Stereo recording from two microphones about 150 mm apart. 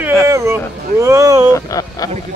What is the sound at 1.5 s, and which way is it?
Speech, 25° left (ahead or behind).